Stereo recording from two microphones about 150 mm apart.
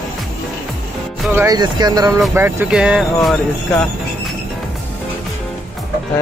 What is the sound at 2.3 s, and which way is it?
Speech, 15° right (ahead or behind).